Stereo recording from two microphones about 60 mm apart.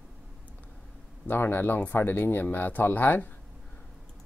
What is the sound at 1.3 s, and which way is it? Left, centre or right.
Speech, left.